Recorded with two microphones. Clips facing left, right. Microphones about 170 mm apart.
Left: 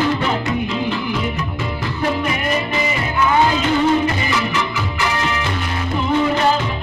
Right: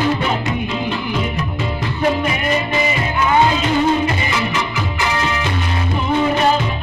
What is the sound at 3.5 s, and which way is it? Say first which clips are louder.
Music: even; 20° right (ahead or behind).